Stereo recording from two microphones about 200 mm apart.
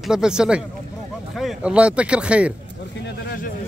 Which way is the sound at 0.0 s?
5° right (ahead or behind).